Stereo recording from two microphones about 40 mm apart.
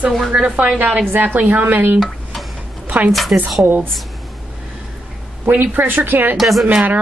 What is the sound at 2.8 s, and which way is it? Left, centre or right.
Speech, right.